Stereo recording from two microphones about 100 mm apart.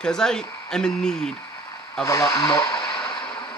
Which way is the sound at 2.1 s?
35° left (ahead or behind).